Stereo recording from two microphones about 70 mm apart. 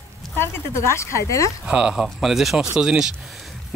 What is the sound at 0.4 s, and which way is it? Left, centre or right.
Speech, left.